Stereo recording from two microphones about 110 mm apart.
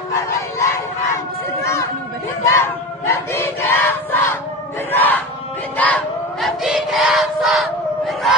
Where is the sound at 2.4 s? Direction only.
20° left (ahead or behind).